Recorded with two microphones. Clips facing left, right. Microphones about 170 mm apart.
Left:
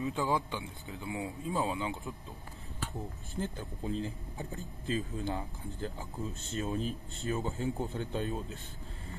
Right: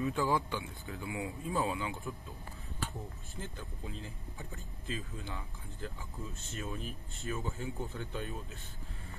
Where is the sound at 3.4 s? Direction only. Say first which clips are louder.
Left 7 dB; 35° left (ahead or behind).